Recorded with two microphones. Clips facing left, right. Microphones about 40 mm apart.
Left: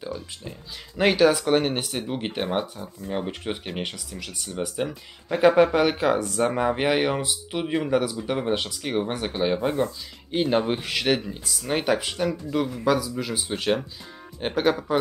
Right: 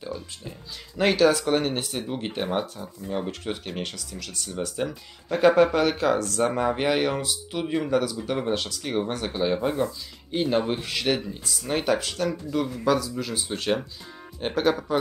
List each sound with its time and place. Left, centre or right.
0.9 s speech: centre